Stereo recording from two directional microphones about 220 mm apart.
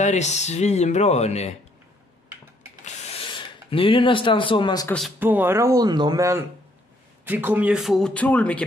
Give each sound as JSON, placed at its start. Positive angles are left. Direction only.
{"t": 0.0, "sound": "speech", "side_deg": 30}
{"t": 2.8, "sound": "a sound", "side_deg": 30}
{"t": 4.8, "sound": "speech", "side_deg": 5}
{"t": 5.2, "sound": "speech", "side_deg": -10}